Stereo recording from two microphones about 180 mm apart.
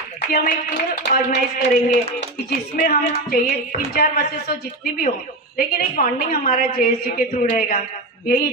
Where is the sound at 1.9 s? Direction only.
75° left (ahead or behind).